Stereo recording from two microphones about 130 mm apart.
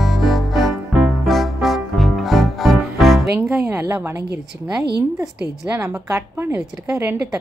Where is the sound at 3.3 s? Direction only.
20° right (ahead or behind).